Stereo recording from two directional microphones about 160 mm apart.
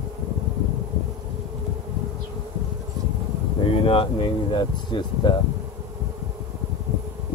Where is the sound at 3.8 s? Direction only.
30° left (ahead or behind).